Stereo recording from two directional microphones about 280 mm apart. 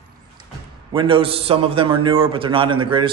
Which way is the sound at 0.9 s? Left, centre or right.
Centre.